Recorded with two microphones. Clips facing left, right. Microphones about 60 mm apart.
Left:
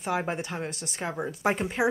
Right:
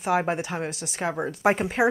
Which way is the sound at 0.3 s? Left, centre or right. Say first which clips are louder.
Right 4 dB; centre.